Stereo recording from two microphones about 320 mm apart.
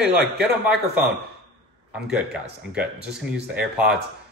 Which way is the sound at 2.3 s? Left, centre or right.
Centre.